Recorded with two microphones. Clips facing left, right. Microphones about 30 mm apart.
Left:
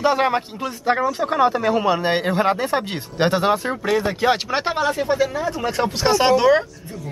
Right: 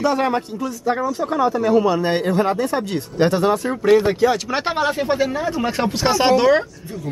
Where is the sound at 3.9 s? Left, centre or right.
Right.